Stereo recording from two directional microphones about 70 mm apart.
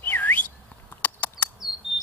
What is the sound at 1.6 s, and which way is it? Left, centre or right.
Chirp, centre.